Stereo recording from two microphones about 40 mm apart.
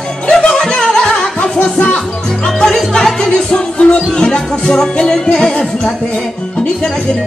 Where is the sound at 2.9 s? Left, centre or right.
Centre; by 4.0 s left.